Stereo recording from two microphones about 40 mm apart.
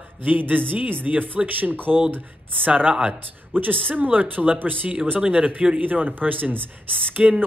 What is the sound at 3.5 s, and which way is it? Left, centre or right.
Speech, right.